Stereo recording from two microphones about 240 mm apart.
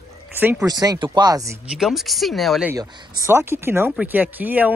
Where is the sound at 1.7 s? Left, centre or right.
Centre.